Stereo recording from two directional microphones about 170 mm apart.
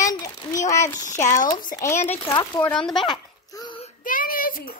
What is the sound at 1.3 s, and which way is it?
Speech, 50° left (ahead or behind).